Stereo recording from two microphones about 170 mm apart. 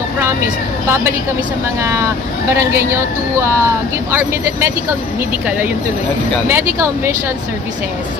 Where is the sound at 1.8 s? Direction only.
15° right (ahead or behind).